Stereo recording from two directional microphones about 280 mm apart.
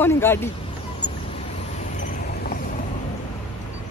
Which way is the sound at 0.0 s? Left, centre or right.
Centre.